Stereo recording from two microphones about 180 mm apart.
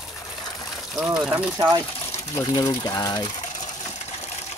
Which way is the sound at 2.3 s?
20° left (ahead or behind).